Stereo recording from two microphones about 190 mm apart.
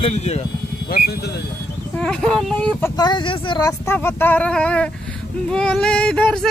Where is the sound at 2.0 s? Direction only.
5° left (ahead or behind).